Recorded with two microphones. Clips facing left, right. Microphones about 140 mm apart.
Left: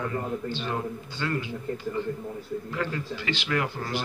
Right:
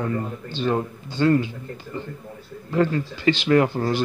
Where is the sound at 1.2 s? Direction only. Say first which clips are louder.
Right 12 dB; 35° right (ahead or behind).